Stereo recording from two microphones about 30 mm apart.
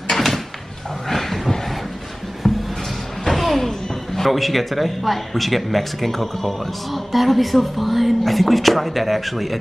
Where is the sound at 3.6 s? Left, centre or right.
Centre.